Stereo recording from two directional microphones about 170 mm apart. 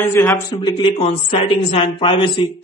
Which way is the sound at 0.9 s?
35° left (ahead or behind).